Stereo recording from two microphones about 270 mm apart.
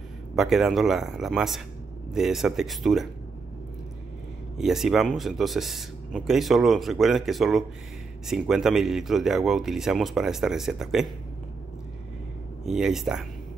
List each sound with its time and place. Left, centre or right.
0.4 s speech: centre
4.6 s speech: centre
12.6 s speech: centre